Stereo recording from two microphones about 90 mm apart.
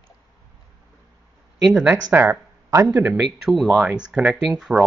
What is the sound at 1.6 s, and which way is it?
Speech, 5° right (ahead or behind).